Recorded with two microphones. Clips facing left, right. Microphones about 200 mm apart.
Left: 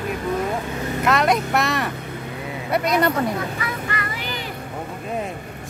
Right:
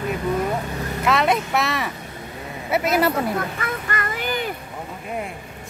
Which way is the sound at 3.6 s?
50° right (ahead or behind).